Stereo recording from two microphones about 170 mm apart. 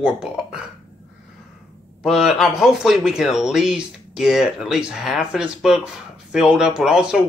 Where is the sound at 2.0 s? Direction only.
Centre (ahead or behind).